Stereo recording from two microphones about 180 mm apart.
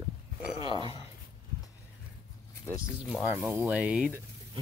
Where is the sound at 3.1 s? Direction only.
Centre (ahead or behind).